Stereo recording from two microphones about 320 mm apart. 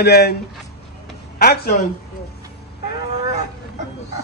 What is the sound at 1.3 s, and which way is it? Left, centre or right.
Speech, left.